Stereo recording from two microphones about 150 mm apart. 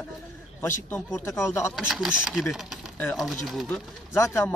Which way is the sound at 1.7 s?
5° right (ahead or behind).